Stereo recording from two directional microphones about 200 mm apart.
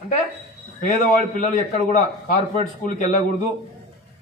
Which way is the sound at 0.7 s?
40° left (ahead or behind).